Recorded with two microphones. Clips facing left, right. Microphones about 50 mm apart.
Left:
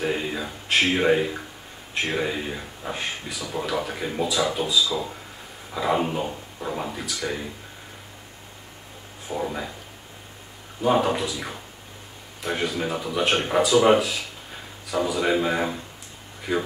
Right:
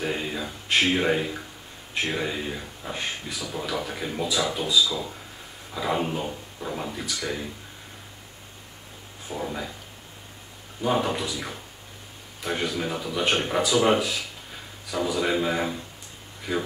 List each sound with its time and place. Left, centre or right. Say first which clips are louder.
0.0 s speech: left 2 dB; centre
9.3 s speech: left 3 dB; centre
10.8 s speech: left 4 dB; centre
16.5 s speech: left 3 dB; centre